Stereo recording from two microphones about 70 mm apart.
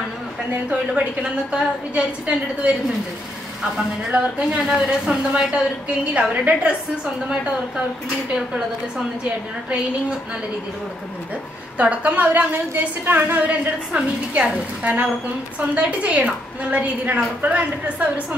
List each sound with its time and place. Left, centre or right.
0.5 s a woman's voice: right
11.8 s a woman's voice: right